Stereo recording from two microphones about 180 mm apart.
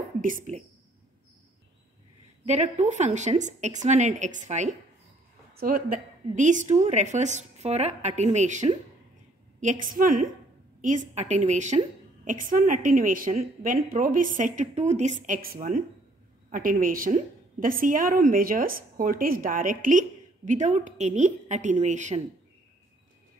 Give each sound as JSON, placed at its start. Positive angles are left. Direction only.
{"t": 0.2, "sound": "a woman's voice", "side_deg": -45}
{"t": 2.4, "sound": "a woman's voice", "side_deg": -40}
{"t": 5.5, "sound": "a woman's voice", "side_deg": -55}